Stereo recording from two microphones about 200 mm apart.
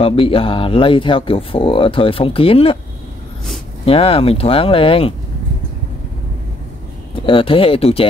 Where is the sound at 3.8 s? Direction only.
30° left (ahead or behind).